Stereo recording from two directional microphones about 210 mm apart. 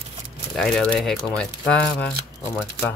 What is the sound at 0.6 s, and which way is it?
Speech, centre (ahead or behind).